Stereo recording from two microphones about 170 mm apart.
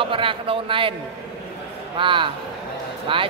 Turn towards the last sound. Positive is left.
turn(degrees=-30)  # may be behind; listen again after turning